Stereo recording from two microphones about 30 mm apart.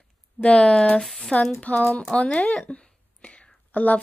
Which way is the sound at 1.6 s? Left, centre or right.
Left.